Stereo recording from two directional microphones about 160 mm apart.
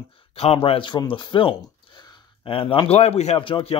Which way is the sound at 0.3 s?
40° left (ahead or behind).